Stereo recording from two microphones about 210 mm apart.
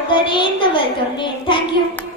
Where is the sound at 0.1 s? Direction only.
25° left (ahead or behind).